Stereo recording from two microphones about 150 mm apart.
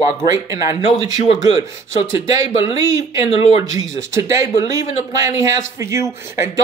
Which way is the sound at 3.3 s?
40° left (ahead or behind).